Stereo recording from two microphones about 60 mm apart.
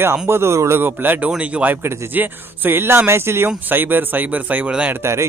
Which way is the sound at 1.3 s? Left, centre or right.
Right.